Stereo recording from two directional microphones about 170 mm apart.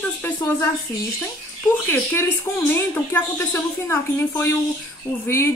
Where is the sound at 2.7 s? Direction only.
15° left (ahead or behind).